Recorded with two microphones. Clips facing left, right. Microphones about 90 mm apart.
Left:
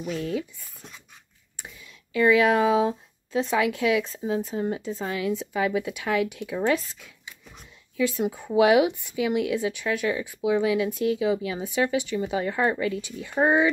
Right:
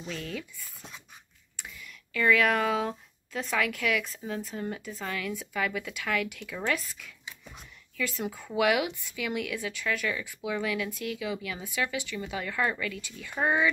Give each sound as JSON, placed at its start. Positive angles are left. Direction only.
{"t": 0.0, "sound": "speech", "side_deg": 20}
{"t": 1.6, "sound": "speech", "side_deg": 20}